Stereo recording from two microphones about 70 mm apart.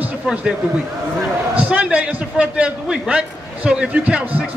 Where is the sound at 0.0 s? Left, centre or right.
Centre.